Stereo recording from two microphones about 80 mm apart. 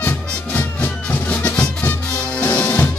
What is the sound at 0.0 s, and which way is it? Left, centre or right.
Music, left.